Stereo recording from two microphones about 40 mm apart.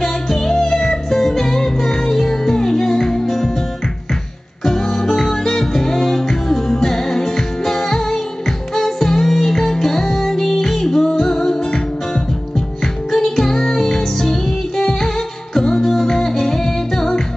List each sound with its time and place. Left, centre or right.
0.0 s music: centre
4.6 s music: centre